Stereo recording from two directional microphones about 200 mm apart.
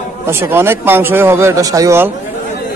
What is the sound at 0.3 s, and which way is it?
A man's voice, 10° right (ahead or behind).